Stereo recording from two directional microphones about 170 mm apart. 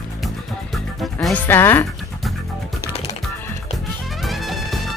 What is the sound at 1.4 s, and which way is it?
Speech, 15° left (ahead or behind).